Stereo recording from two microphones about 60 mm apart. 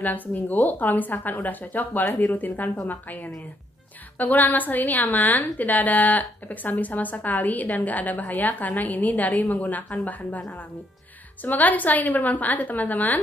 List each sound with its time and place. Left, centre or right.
0.0 s a woman's voice: left
4.2 s a woman's voice: left
11.4 s a woman's voice: left